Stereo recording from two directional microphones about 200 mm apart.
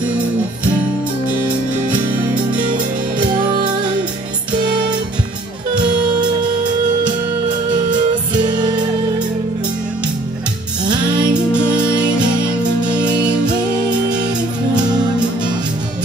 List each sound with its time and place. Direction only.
8.3 s music: 20° right (ahead or behind)
11.3 s music: 5° right (ahead or behind)
12.6 s music: 20° right (ahead or behind)
13.0 s music: 5° right (ahead or behind)